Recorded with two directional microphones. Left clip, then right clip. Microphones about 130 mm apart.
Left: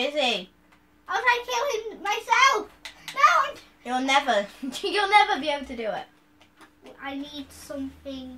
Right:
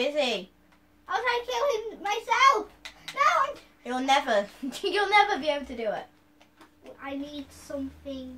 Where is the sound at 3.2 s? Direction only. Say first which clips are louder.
Left 4 dB; 40° left (ahead or behind).